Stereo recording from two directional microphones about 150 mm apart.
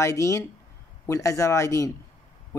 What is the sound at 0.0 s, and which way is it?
Speech, 20° left (ahead or behind).